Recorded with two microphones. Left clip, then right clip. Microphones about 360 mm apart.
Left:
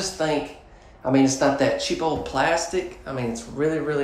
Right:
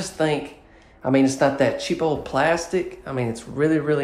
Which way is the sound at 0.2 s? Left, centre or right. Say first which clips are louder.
Right 3 dB; centre.